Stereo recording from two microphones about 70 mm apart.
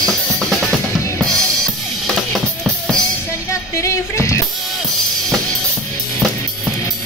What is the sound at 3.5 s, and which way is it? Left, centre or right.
Music, left.